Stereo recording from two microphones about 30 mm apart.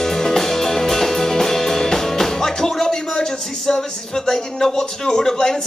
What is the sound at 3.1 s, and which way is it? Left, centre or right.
Speech, centre.